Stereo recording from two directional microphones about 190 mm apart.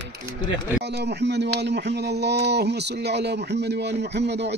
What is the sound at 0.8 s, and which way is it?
Speech, 60° right (ahead or behind).